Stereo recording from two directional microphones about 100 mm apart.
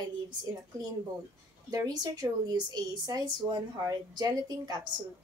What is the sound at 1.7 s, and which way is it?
A woman's voice, 35° right (ahead or behind).